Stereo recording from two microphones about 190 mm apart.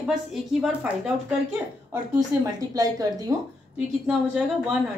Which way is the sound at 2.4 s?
20° right (ahead or behind).